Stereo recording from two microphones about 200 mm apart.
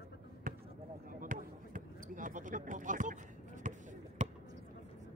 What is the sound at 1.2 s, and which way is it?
Basketball bounce, 40° right (ahead or behind).